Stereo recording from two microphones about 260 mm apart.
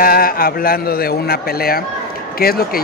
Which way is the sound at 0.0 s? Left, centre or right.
Left.